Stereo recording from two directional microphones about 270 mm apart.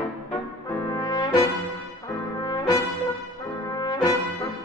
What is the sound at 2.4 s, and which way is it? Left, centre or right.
Brass instrument, centre.